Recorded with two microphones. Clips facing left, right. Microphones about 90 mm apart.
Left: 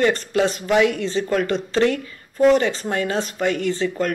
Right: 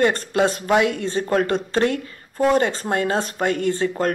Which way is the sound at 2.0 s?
40° right (ahead or behind).